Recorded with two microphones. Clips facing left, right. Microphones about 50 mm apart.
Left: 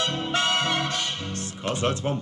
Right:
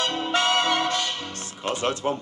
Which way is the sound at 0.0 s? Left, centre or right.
Right.